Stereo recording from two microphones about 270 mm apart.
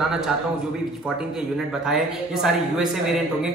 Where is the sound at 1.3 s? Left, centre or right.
Centre.